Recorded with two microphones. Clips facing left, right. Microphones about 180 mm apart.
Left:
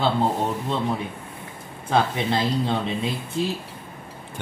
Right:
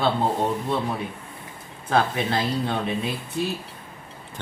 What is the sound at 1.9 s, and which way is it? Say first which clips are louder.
Speech: left 1 dB; 20° left (ahead or behind).